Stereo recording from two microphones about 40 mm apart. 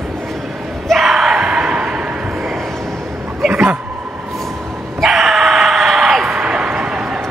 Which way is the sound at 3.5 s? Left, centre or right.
Right.